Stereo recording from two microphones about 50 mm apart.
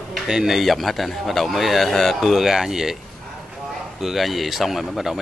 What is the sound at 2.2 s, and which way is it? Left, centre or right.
Speech, centre.